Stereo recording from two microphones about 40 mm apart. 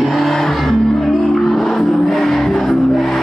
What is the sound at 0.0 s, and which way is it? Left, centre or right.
Music, centre.